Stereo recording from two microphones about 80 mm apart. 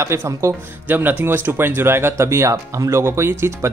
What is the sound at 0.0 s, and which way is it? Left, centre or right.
Speech, right.